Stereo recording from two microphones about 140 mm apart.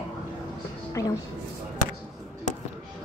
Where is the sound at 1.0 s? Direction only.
20° left (ahead or behind).